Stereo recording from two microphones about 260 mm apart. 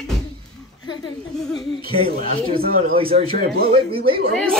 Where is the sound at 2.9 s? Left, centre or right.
Right.